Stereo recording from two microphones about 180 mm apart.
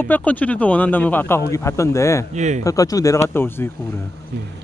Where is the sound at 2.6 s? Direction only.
20° left (ahead or behind).